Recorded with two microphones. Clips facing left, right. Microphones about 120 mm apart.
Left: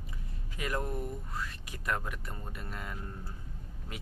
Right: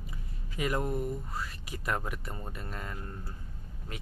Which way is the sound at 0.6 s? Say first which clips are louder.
Right 4 dB; 10° right (ahead or behind).